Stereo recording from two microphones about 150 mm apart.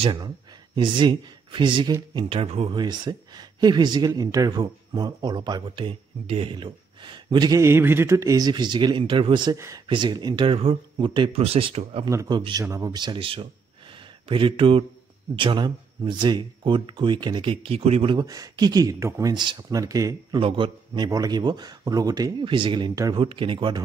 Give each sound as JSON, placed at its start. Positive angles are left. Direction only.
{"t": 0.0, "sound": "speech", "side_deg": -30}
{"t": 2.7, "sound": "speech", "side_deg": -30}
{"t": 18.1, "sound": "speech", "side_deg": -25}
{"t": 20.3, "sound": "speech", "side_deg": -35}